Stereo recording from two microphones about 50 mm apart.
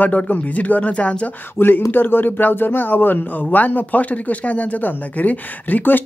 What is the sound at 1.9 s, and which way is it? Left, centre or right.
Speech, left.